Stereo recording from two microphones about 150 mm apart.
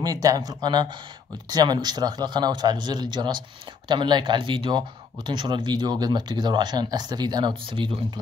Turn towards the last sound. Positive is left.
turn(degrees=-30)  # may be behind; listen again after turning